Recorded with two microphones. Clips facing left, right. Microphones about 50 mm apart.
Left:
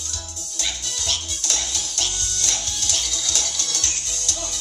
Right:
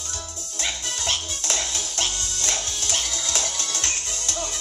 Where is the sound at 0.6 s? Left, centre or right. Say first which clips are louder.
Right 1 dB; right.